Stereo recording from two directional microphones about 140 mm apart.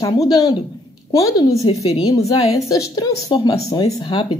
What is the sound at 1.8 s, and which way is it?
Speech, 50° left (ahead or behind).